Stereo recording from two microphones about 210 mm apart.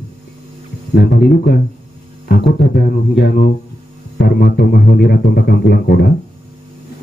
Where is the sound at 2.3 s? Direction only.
50° left (ahead or behind).